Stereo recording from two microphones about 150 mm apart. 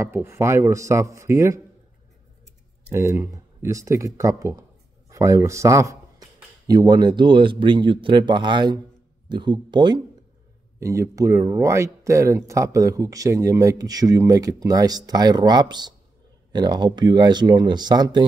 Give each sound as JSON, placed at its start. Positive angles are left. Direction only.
{"t": 0.0, "sound": "speech", "side_deg": -15}
{"t": 2.9, "sound": "speech", "side_deg": -20}
{"t": 10.8, "sound": "speech", "side_deg": -20}